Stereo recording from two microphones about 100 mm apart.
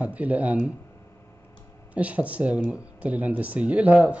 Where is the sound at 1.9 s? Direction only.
15° right (ahead or behind).